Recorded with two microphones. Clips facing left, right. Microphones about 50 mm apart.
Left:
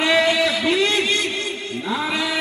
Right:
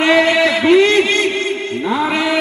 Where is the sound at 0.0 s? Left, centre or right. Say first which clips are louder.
Right 5 dB; right.